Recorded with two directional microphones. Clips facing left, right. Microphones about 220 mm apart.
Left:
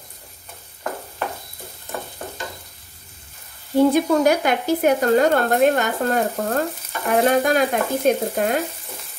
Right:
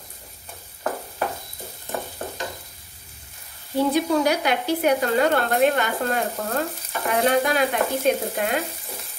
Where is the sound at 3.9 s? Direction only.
50° left (ahead or behind).